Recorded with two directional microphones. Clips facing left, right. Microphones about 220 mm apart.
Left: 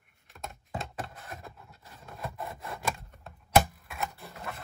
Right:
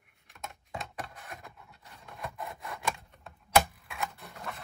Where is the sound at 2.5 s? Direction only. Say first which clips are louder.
Left 2 dB; 30° left (ahead or behind).